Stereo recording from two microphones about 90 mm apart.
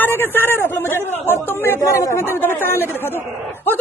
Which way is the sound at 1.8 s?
35° left (ahead or behind).